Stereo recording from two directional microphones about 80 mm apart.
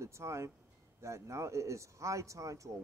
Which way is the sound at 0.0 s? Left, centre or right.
Right.